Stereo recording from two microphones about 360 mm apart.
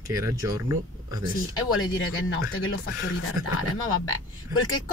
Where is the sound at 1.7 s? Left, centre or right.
Left.